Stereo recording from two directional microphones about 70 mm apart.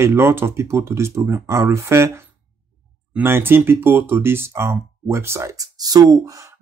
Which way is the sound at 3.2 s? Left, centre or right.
Right.